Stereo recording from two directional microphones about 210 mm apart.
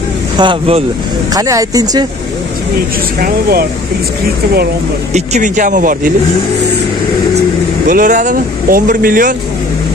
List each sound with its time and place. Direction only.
0.4 s speech: 25° right (ahead or behind)
3.2 s speech: 45° right (ahead or behind)
5.1 s speech: 35° right (ahead or behind)
7.9 s speech: 40° right (ahead or behind)